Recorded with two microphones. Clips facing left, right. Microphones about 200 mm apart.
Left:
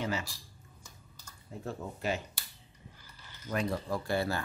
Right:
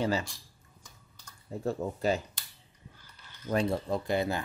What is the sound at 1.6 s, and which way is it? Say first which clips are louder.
Speech: right 7 dB; 35° right (ahead or behind).